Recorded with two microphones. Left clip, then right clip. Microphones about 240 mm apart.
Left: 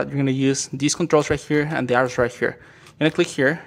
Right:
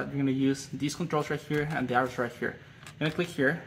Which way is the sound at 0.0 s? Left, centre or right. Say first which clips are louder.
Left 7 dB; left.